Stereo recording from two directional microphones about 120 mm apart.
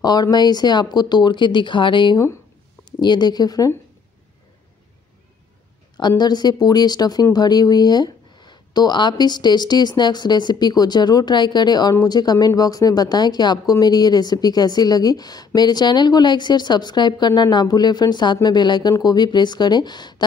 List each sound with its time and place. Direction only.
0.0 s speech: 35° left (ahead or behind)
5.9 s speech: 35° left (ahead or behind)